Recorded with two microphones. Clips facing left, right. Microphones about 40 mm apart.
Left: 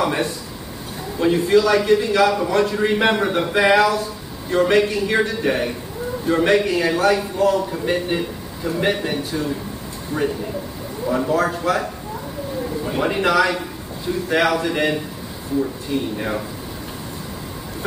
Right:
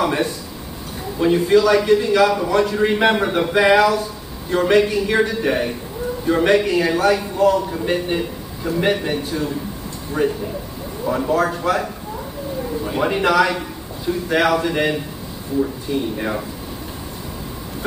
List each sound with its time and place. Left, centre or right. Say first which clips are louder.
0.0 s a man's voice: right 1 dB; centre
10.1 s speech: right 2 dB; right
11.1 s a man's voice: right 1 dB; centre